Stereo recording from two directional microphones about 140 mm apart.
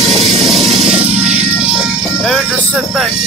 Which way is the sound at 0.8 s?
50° right (ahead or behind).